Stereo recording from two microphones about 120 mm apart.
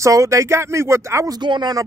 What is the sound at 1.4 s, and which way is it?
Speech, 35° right (ahead or behind).